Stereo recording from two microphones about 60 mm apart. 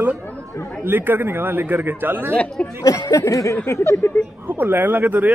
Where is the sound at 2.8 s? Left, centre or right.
Left.